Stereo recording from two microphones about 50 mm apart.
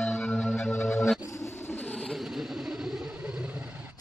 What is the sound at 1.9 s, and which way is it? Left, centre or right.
Vehicle, centre.